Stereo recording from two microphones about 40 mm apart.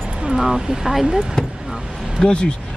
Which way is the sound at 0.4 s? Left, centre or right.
Centre.